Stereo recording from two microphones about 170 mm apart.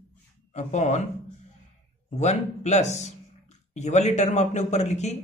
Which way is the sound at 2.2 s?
40° left (ahead or behind).